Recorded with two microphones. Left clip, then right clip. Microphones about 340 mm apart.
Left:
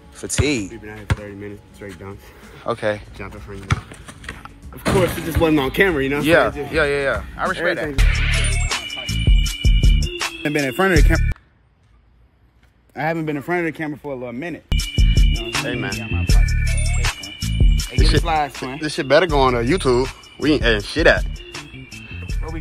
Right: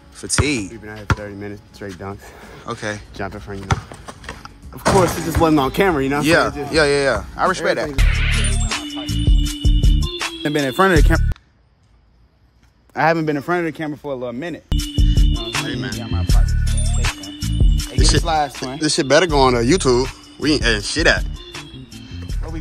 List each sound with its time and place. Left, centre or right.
0.2 s speech: centre
2.6 s speech: centre
3.2 s speech: centre
5.4 s speech: centre
7.9 s music: centre
12.9 s speech: centre
13.5 s music: centre
18.8 s speech: centre
20.0 s music: centre